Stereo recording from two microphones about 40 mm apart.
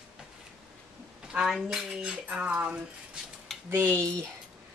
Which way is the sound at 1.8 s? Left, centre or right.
Right.